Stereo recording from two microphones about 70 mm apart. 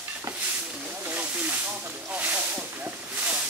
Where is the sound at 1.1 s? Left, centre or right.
Right.